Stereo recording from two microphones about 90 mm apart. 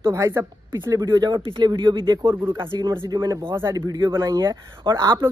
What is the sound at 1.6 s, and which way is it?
Speech, 60° right (ahead or behind).